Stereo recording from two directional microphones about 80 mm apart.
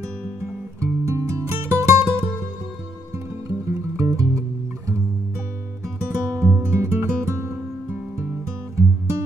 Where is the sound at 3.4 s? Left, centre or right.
Right.